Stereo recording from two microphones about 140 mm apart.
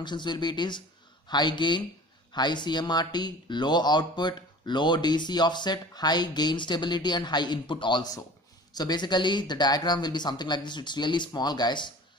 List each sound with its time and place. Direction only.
0.0 s speech: 30° left (ahead or behind)